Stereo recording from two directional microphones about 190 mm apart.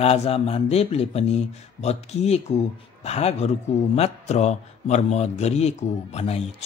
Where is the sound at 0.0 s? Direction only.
35° left (ahead or behind).